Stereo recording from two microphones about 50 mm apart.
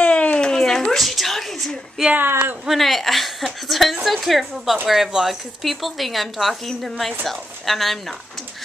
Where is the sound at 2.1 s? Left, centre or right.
Right.